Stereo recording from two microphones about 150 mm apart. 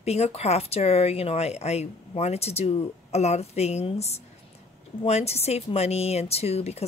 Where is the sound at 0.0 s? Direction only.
45° left (ahead or behind).